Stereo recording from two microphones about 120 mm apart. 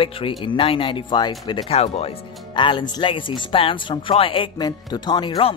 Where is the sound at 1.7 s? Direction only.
60° left (ahead or behind).